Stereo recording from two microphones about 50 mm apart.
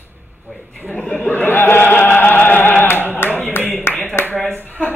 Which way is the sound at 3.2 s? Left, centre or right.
Left.